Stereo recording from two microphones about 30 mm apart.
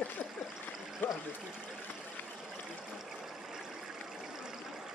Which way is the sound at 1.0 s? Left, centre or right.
Left.